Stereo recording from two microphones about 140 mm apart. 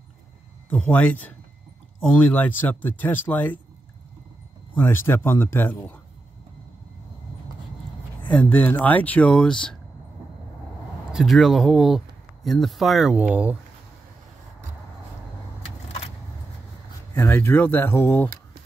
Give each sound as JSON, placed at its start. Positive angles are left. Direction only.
{"t": 0.7, "sound": "speech", "side_deg": 10}
{"t": 4.7, "sound": "speech", "side_deg": 15}
{"t": 8.3, "sound": "speech", "side_deg": 10}
{"t": 11.1, "sound": "speech", "side_deg": 0}
{"t": 17.1, "sound": "speech", "side_deg": 15}